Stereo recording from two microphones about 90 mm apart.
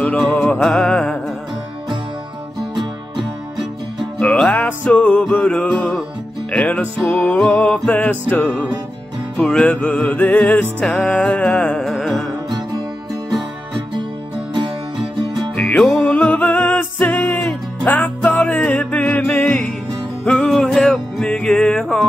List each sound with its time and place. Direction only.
0.0 s music: 15° left (ahead or behind)
0.6 s music: 5° left (ahead or behind)
4.5 s music: 15° left (ahead or behind)
7.0 s music: centre (ahead or behind)
11.9 s music: centre (ahead or behind)
15.6 s music: 10° left (ahead or behind)
20.2 s music: 10° left (ahead or behind)